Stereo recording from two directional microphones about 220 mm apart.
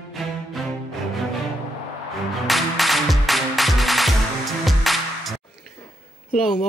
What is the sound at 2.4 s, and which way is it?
Music, centre (ahead or behind).